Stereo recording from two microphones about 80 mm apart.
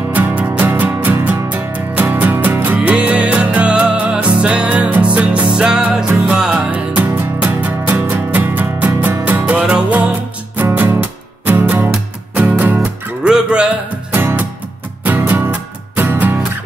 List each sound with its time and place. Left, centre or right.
0.1 s music: centre
12.8 s music: centre
14.1 s music: right